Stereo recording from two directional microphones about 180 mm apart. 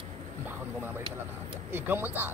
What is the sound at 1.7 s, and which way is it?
Speech, 10° right (ahead or behind).